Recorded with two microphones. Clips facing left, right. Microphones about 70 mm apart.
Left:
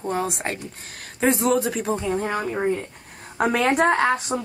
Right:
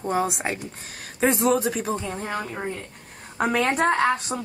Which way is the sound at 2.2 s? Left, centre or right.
Centre.